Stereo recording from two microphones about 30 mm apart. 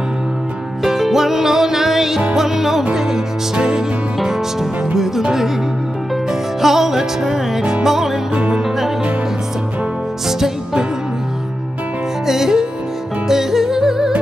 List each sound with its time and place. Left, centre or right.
0.8 s music: centre
3.5 s music: right
4.2 s music: centre
6.6 s music: centre
10.2 s music: centre
12.3 s music: centre